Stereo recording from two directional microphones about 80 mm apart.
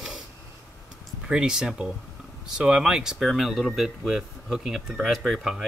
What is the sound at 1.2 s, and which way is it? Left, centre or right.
Speech, centre.